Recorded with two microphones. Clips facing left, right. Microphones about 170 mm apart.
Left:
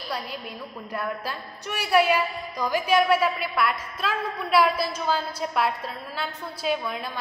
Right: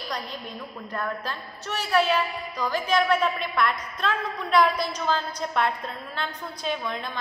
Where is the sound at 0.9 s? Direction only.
10° left (ahead or behind).